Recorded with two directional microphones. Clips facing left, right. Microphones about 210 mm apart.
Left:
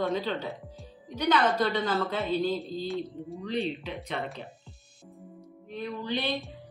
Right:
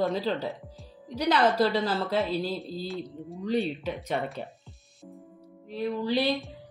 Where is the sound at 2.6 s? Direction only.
Centre (ahead or behind).